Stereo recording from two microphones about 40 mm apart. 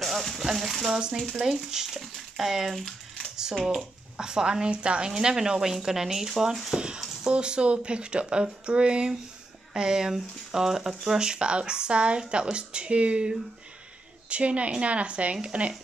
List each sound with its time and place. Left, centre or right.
0.0 s a sound: centre
0.5 s speech: centre
4.2 s speech: centre
7.3 s a woman's voice: right